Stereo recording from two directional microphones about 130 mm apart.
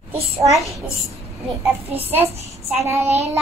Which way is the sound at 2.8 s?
20° right (ahead or behind).